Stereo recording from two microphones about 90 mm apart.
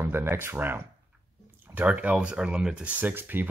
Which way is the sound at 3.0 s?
20° right (ahead or behind).